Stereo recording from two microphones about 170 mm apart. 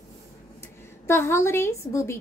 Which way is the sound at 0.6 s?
15° left (ahead or behind).